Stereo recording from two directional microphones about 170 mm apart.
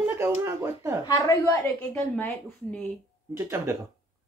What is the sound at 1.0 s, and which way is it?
Speech, 20° left (ahead or behind).